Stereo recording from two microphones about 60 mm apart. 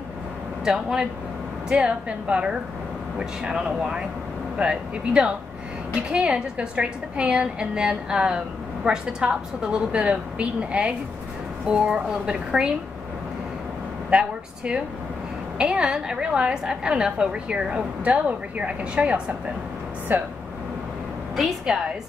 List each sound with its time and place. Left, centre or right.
0.7 s a woman's voice: centre
14.1 s a woman's voice: centre
20.1 s speech: right
21.7 s a woman's voice: centre